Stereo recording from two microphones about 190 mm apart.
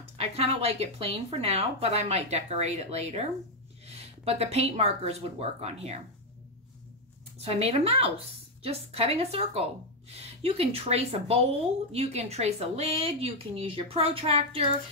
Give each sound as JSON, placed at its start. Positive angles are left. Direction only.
{"t": 0.2, "sound": "speech", "side_deg": -30}
{"t": 7.3, "sound": "speech", "side_deg": -35}